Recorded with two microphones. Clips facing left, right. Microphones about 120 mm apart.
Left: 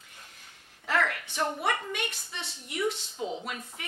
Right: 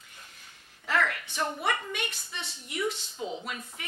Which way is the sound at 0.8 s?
45° left (ahead or behind).